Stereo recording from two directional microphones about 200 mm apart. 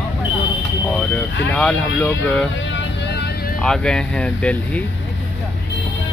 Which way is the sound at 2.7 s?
55° left (ahead or behind).